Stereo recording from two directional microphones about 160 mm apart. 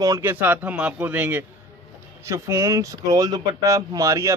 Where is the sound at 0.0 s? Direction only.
15° right (ahead or behind).